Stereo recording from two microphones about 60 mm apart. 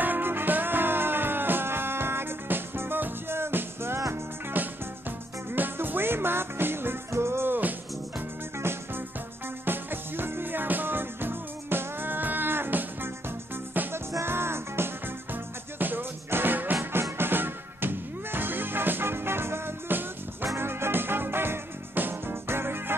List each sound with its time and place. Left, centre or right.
0.0 s music: right
9.7 s music: right
14.2 s music: right